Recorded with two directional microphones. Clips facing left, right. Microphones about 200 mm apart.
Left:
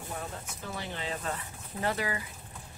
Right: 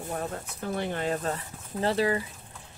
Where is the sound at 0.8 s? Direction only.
50° right (ahead or behind).